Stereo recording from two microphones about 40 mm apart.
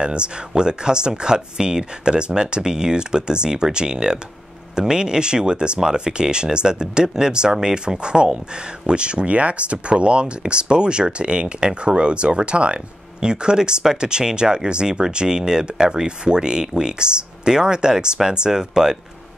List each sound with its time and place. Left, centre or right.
0.0 s speech: right